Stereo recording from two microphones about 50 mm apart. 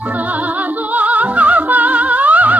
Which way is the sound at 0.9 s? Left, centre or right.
Right.